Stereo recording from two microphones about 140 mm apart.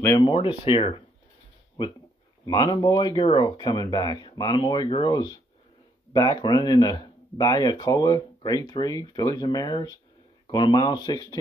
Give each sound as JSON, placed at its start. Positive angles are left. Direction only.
{"t": 0.2, "sound": "speech", "side_deg": 40}
{"t": 2.4, "sound": "speech", "side_deg": 25}